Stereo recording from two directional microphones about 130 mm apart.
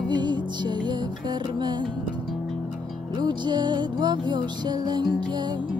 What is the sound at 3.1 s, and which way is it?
Music, 35° right (ahead or behind).